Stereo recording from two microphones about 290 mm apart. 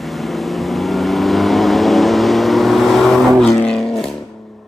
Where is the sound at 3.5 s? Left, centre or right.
Centre.